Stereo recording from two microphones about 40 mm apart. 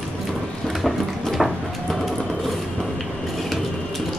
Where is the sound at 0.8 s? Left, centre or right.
Centre.